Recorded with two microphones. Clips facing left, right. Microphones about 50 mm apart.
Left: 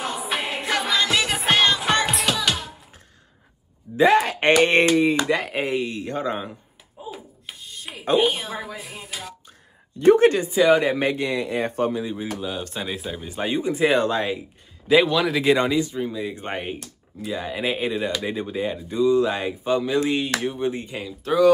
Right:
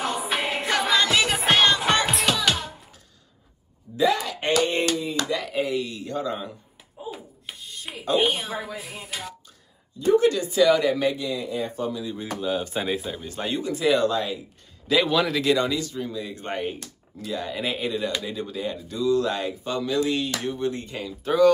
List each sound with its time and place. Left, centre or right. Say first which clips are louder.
0.0 s music: right 1 dB; centre
3.9 s a sound: left 6 dB; left
5.3 s speech: left 2 dB; left
7.0 s a sound: even; centre
8.2 s speech: left 2 dB; centre
9.9 s speech: left 4 dB; left
10.4 s speech: left 2 dB; left
12.2 s speech: right 2 dB; centre
13.1 s speech: left 3 dB; centre; by 14.4 s left
15.0 s speech: left 1 dB; centre
15.4 s speech: left 3 dB; left
21.2 s speech: even; centre